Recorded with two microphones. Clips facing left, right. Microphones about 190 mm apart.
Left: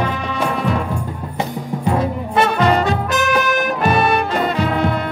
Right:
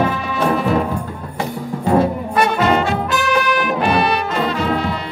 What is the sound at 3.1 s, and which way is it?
Brass instrument, 45° left (ahead or behind).